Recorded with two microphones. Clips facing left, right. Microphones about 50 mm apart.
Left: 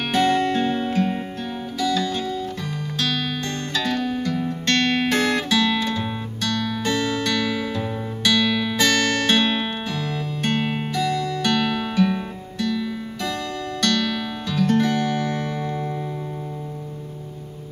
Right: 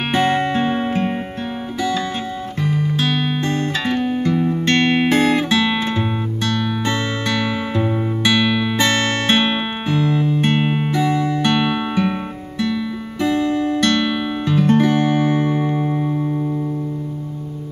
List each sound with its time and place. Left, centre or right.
0.1 s music: right